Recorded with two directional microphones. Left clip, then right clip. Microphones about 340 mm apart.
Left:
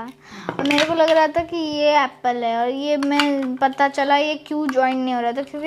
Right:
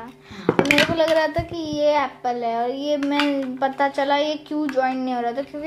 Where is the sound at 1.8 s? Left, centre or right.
Left.